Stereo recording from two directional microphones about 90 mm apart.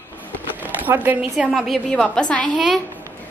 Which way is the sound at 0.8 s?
20° right (ahead or behind).